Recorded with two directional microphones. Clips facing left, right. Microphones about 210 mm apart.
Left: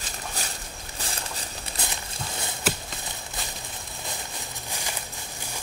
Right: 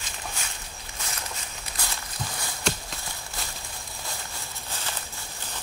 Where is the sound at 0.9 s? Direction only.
35° left (ahead or behind).